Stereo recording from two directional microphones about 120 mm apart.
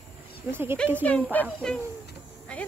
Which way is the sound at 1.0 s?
10° left (ahead or behind).